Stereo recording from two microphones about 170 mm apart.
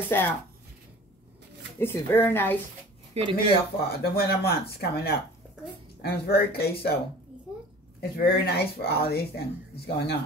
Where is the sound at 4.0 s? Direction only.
65° left (ahead or behind).